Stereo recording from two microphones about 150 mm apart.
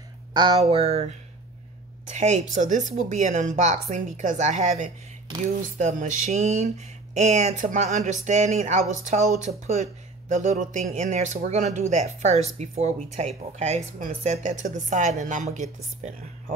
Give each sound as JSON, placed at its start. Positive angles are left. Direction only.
{"t": 0.3, "sound": "speech", "side_deg": -30}
{"t": 0.6, "sound": "speech", "side_deg": -40}